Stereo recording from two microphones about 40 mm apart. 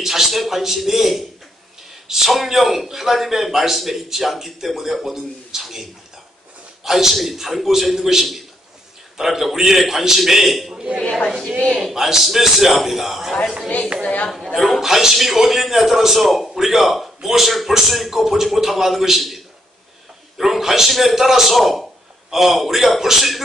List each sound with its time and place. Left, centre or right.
0.0 s a man's voice: centre
11.0 s a woman's voice: left
11.8 s a man's voice: centre
14.5 s a man's voice: centre
14.8 s a man's voice: centre